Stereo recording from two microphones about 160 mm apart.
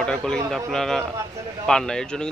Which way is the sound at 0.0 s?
5° left (ahead or behind).